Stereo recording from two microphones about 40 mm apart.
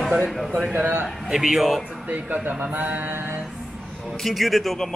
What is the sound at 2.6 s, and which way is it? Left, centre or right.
Mantra, right.